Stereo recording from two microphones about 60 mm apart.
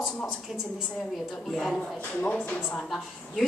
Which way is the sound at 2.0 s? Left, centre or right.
Left.